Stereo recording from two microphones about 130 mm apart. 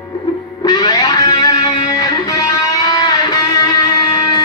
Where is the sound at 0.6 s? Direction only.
30° left (ahead or behind).